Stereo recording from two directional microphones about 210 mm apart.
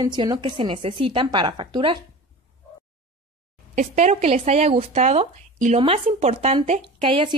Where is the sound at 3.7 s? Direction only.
35° right (ahead or behind).